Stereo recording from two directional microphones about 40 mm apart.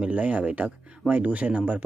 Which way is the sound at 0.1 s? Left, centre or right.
Right.